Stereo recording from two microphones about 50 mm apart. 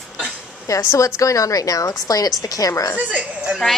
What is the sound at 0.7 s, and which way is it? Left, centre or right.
Speech, left.